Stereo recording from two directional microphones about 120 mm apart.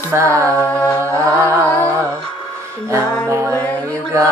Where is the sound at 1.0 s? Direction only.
25° right (ahead or behind).